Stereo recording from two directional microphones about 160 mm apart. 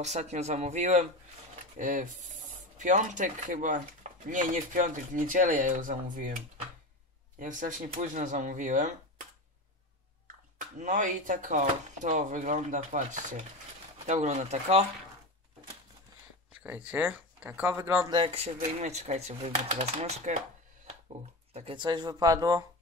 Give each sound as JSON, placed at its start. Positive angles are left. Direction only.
{"t": 0.0, "sound": "speech", "side_deg": -45}
{"t": 10.8, "sound": "speech", "side_deg": -50}
{"t": 16.9, "sound": "speech", "side_deg": -10}
{"t": 18.1, "sound": "speech", "side_deg": -35}
{"t": 21.5, "sound": "speech", "side_deg": -35}